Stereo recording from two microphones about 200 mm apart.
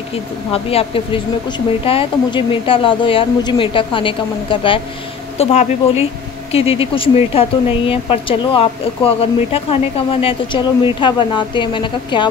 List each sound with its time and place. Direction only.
0.1 s a woman's voice: 30° left (ahead or behind)